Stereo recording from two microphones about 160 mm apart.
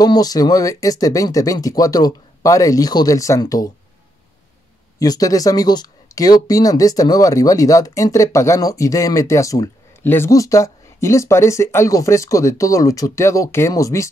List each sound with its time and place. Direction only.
0.0 s speech: 25° left (ahead or behind)
4.9 s speech: 25° left (ahead or behind)